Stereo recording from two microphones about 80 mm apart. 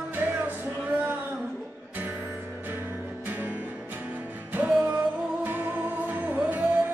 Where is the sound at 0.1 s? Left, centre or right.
Right.